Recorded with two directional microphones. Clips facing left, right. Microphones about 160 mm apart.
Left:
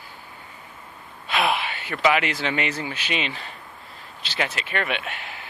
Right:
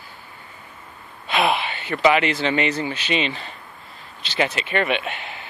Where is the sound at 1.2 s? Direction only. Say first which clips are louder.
Right 3 dB; centre (ahead or behind).